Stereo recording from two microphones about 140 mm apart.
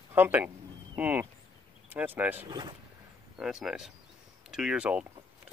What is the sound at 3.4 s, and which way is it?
Speech, 5° right (ahead or behind).